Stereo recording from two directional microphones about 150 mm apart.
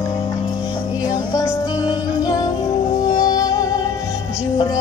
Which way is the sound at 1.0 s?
25° left (ahead or behind).